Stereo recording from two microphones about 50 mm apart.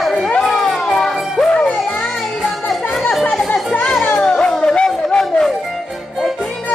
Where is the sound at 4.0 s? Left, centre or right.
Left.